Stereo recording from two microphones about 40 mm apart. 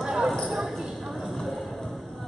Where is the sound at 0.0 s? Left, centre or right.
Centre.